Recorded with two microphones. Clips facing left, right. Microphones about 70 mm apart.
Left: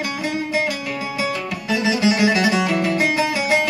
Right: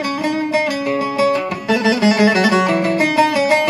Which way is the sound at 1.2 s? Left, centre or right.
Right.